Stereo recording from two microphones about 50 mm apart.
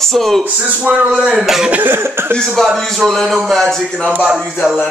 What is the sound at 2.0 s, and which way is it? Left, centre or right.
Speech, right.